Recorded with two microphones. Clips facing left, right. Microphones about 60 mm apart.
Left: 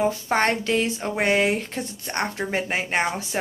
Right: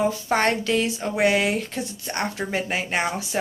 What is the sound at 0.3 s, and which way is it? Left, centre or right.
A woman's voice, left.